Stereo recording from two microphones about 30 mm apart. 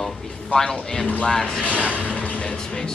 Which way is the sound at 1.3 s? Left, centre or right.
Left.